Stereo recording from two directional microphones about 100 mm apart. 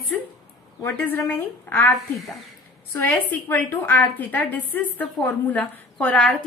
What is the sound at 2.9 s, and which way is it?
A woman's voice, 15° left (ahead or behind).